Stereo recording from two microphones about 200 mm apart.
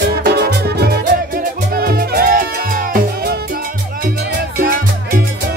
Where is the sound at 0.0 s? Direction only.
55° right (ahead or behind).